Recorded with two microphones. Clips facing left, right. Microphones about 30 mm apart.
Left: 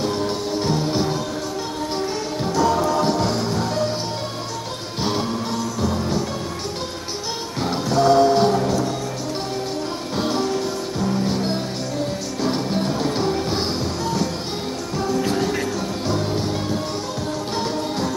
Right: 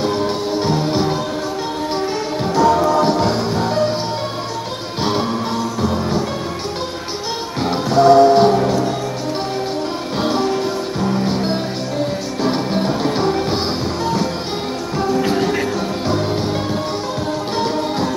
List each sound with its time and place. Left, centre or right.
0.0 s music: centre
5.8 s music: centre
7.6 s music: centre
10.1 s music: centre
17.6 s music: right